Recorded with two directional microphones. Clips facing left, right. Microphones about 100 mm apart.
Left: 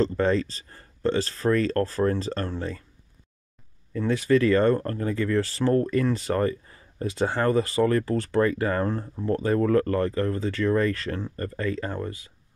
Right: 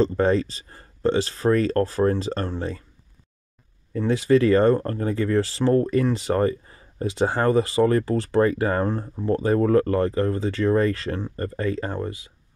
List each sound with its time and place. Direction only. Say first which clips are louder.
0.2 s speech: right 3 dB; 35° right (ahead or behind)
4.0 s speech: right 3 dB; 25° right (ahead or behind)